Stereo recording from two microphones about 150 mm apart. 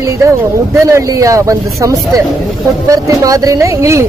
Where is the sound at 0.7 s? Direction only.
20° right (ahead or behind).